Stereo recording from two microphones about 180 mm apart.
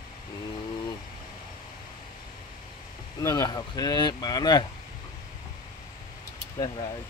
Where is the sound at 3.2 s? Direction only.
20° left (ahead or behind).